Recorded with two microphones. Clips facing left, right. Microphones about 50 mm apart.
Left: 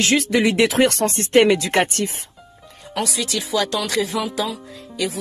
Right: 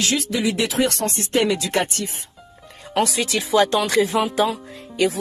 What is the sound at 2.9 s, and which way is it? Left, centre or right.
Speech, right.